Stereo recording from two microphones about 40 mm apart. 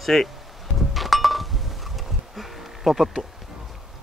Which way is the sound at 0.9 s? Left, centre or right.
Centre.